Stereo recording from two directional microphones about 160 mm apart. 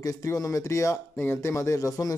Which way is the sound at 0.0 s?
20° left (ahead or behind).